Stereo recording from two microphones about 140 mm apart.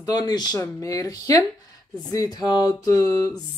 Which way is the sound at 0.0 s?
30° left (ahead or behind).